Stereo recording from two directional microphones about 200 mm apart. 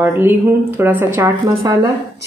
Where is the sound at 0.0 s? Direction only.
10° right (ahead or behind).